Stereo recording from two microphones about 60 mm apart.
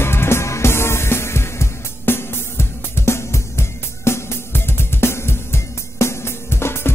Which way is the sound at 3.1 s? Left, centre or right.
Left.